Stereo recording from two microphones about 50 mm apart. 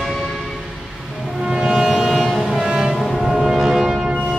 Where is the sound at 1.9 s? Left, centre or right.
Centre.